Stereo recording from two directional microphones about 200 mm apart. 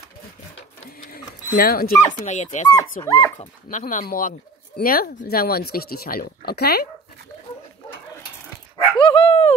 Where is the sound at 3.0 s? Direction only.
15° left (ahead or behind).